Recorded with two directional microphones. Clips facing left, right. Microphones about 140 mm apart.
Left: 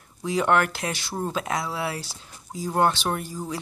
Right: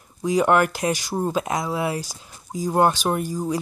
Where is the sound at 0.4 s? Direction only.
10° right (ahead or behind).